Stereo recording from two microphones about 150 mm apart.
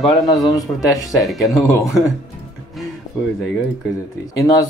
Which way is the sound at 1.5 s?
20° left (ahead or behind).